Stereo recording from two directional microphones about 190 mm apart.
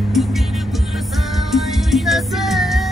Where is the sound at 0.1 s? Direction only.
Centre (ahead or behind).